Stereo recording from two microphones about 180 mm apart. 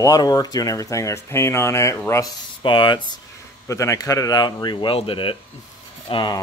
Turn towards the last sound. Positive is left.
turn(degrees=25)  # may be behind; listen again after turning